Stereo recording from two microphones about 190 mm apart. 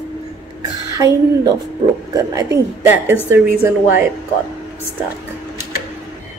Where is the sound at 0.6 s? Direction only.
20° right (ahead or behind).